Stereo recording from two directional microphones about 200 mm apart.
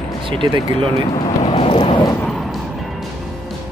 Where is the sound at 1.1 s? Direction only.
30° left (ahead or behind).